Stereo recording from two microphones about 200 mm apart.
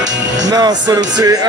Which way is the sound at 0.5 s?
20° right (ahead or behind).